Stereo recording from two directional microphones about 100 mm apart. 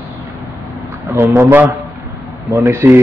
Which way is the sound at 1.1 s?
20° right (ahead or behind).